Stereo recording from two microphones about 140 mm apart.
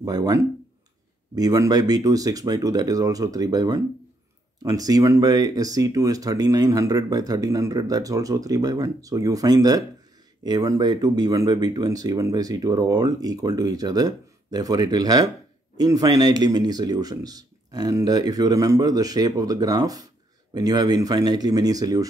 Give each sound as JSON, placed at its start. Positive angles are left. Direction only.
{"t": 0.0, "sound": "speech", "side_deg": -25}